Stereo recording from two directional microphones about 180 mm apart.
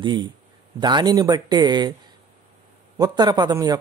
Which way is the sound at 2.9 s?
20° right (ahead or behind).